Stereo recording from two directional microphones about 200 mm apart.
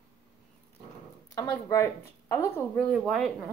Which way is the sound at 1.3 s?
15° left (ahead or behind).